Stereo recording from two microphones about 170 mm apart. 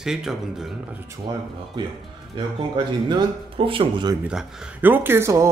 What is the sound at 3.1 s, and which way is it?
Speech, 30° right (ahead or behind).